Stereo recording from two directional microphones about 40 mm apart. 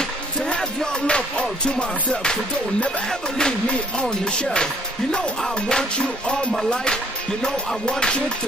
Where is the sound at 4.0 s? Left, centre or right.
Centre.